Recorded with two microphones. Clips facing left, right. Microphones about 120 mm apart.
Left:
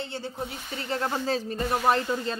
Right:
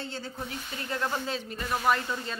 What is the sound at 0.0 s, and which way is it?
A woman's voice, 20° left (ahead or behind).